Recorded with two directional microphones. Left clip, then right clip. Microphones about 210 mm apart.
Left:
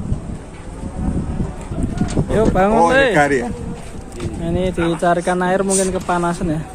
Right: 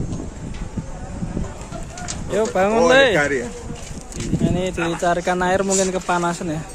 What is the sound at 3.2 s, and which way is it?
Speech, 50° left (ahead or behind).